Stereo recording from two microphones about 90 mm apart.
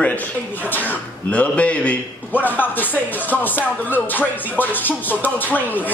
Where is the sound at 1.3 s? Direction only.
15° left (ahead or behind).